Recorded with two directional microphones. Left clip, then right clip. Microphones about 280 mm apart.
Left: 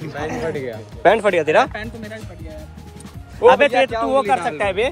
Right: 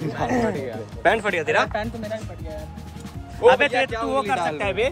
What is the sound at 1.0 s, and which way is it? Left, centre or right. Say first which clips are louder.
Speech: left 6 dB; centre.